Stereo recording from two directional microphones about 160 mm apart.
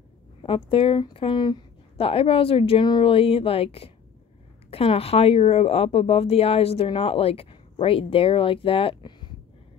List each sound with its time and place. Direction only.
0.4 s speech: 35° left (ahead or behind)